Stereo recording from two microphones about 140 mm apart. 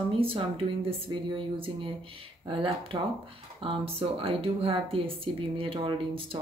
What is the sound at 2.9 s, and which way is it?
Speech, 30° right (ahead or behind).